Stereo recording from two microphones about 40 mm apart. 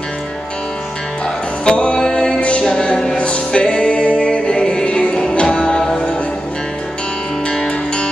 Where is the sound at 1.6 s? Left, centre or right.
Left.